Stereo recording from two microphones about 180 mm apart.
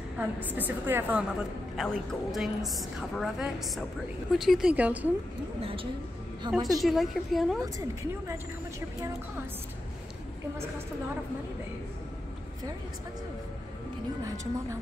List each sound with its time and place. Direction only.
0.5 s a woman's voice: 10° right (ahead or behind)
1.8 s a woman's voice: centre (ahead or behind)
5.6 s speech: 30° right (ahead or behind)
6.5 s a woman's voice: centre (ahead or behind)
7.6 s a woman's voice: 15° right (ahead or behind)
14.2 s a woman's voice: 15° right (ahead or behind)